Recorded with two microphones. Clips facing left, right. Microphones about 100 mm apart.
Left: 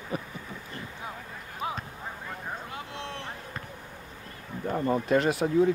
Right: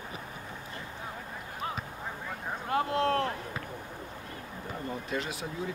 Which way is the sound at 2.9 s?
40° right (ahead or behind).